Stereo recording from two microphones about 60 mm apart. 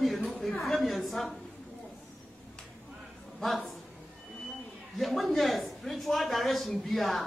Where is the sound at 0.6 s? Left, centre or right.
Centre.